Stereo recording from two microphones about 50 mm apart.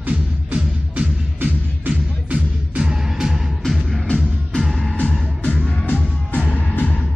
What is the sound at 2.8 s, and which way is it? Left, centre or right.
Music, centre.